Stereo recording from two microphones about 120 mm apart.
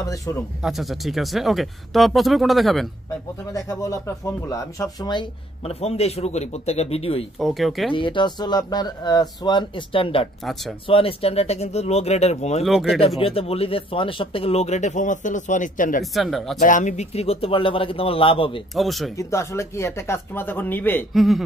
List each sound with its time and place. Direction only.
0.0 s speech: 25° left (ahead or behind)
0.7 s speech: centre (ahead or behind)
3.5 s speech: 25° left (ahead or behind)
5.7 s speech: 60° left (ahead or behind)
7.3 s speech: centre (ahead or behind)
7.9 s speech: 45° left (ahead or behind); by 12.6 s 65° left (ahead or behind)
13.2 s speech: 50° left (ahead or behind); by 15.9 s 90° left
16.0 s speech: centre (ahead or behind)
16.6 s a man's voice: 90° left; by 18.6 s 50° left (ahead or behind)
18.8 s speech: centre (ahead or behind)
19.1 s speech: 25° left (ahead or behind)
21.1 s speech: centre (ahead or behind)